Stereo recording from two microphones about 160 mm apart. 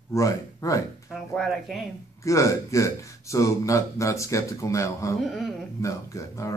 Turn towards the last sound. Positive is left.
turn(degrees=20)  # may be behind; listen again after turning